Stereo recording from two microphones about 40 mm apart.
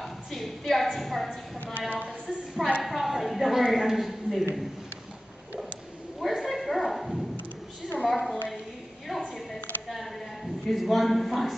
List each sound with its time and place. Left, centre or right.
0.0 s a woman's voice: centre
1.8 s a woman's voice: left
2.0 s a woman's voice: centre
6.1 s bow-wow: centre
8.0 s a sound: centre